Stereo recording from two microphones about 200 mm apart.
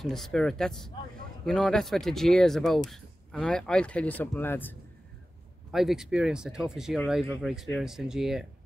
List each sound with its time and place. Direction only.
0.0 s speech: centre (ahead or behind)
5.7 s speech: centre (ahead or behind)